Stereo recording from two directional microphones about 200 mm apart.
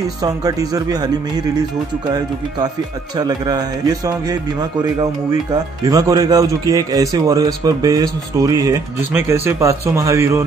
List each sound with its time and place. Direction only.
0.2 s speech: 20° right (ahead or behind)
3.2 s speech: 20° right (ahead or behind)